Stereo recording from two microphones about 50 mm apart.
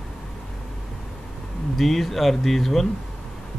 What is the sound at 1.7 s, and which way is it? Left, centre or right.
Speech, centre.